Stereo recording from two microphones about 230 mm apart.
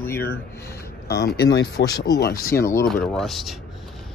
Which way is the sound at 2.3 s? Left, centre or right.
Centre.